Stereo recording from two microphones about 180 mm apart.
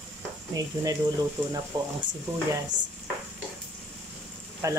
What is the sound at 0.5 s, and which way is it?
Speech, 20° right (ahead or behind).